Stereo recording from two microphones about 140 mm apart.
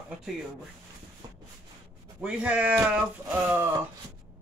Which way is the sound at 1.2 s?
30° right (ahead or behind).